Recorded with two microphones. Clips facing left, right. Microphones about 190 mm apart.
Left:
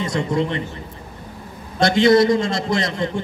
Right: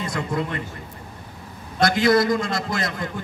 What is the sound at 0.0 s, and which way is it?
Speech, 25° left (ahead or behind).